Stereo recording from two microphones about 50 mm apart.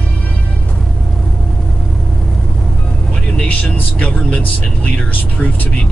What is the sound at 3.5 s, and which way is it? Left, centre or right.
Vehicle, left.